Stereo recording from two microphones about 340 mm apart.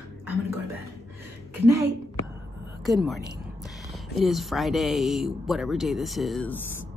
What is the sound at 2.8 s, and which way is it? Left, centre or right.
Speech, centre.